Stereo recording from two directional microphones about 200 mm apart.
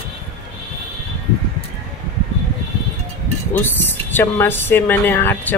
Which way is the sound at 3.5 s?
10° left (ahead or behind).